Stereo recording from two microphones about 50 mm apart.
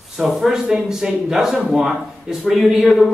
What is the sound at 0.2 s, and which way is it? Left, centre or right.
A man's voice, centre.